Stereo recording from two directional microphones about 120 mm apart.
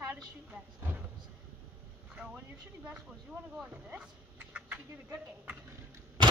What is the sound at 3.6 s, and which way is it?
Speech, 10° right (ahead or behind).